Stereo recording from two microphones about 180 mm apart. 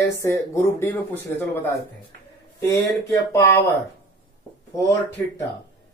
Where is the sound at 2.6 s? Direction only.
15° left (ahead or behind).